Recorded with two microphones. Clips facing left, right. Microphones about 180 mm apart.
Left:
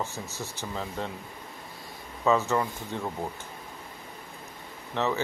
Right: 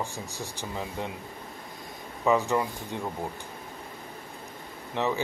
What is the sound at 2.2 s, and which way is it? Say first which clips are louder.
Speech: even; 15° right (ahead or behind).